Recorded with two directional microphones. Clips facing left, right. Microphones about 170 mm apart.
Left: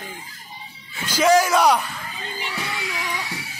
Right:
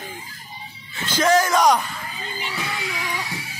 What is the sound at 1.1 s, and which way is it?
Speech, 10° left (ahead or behind).